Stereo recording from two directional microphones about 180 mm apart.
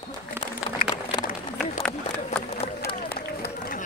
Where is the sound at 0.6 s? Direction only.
5° right (ahead or behind).